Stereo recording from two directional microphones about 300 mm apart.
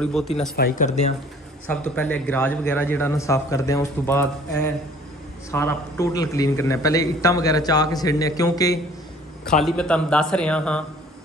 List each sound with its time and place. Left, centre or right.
0.0 s speech: centre
0.6 s speech: left
1.7 s a man's voice: centre
9.5 s speech: centre